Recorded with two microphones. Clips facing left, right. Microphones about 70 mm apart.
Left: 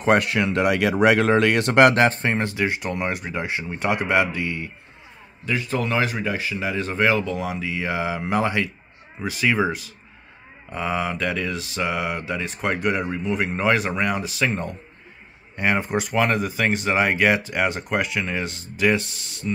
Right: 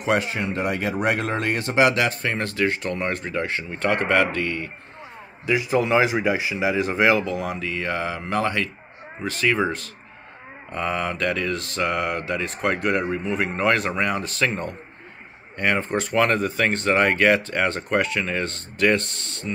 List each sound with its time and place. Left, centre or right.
0.2 s speech: left
2.2 s speech: left
5.5 s speech: centre
10.7 s mantra: centre
15.5 s speech: centre